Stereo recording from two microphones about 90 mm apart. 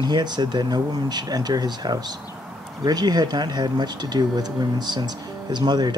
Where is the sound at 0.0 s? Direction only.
55° right (ahead or behind).